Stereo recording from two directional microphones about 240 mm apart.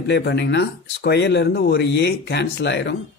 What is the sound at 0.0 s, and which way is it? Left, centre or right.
A man's voice, left.